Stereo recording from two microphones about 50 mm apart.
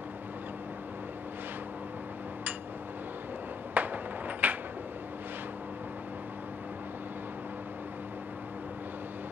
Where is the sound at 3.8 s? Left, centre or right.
Right.